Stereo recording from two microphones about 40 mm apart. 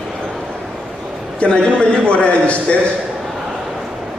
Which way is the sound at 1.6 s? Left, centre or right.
Left.